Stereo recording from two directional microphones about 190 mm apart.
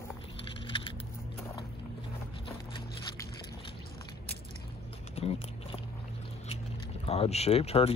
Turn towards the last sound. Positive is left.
turn(degrees=30)  # may be behind; listen again after turning